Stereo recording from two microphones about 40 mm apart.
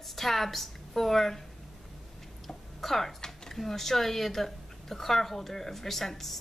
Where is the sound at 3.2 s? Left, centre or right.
Centre.